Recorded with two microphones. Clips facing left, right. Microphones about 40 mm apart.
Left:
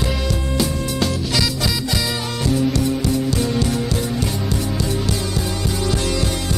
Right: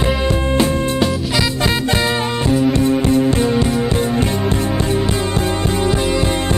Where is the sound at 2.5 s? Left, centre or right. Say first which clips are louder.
Right 4 dB; right.